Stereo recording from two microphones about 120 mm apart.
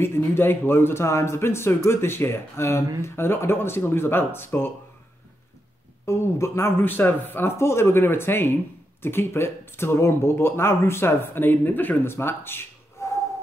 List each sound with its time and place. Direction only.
0.0 s speech: 20° left (ahead or behind)
6.0 s speech: 20° left (ahead or behind)